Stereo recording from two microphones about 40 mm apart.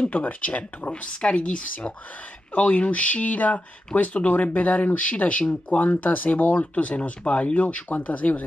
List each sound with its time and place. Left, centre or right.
0.1 s speech: left
6.6 s speech: left